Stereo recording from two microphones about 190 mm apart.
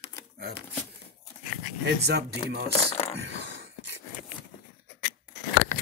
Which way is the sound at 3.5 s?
55° right (ahead or behind).